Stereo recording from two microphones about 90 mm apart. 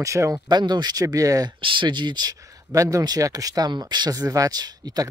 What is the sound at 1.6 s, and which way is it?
Speech, 65° right (ahead or behind).